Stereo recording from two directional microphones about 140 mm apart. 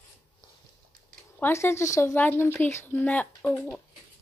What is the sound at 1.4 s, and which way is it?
A woman's voice, 20° left (ahead or behind).